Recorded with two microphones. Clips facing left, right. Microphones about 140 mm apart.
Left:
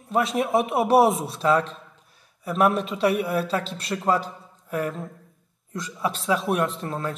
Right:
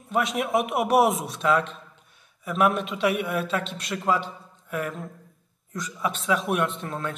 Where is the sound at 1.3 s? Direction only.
30° left (ahead or behind).